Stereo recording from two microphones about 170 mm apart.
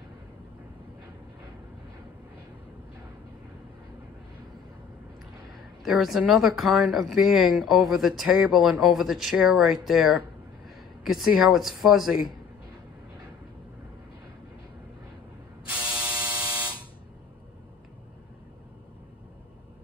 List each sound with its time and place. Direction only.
5.9 s speech: centre (ahead or behind)
15.8 s electric shaver: 5° right (ahead or behind)
16.3 s buzzer: 20° right (ahead or behind)